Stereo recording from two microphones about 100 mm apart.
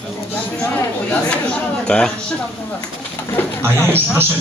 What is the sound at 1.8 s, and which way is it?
Speech, 10° left (ahead or behind).